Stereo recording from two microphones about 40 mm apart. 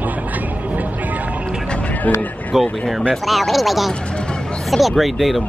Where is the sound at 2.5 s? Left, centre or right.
Centre.